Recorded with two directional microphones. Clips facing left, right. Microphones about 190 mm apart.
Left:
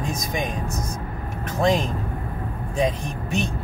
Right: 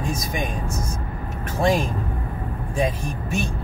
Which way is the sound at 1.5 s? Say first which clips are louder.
Even; 10° right (ahead or behind).